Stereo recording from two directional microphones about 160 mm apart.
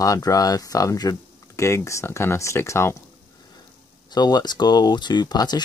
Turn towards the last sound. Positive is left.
turn(degrees=25)  # may be behind; listen again after turning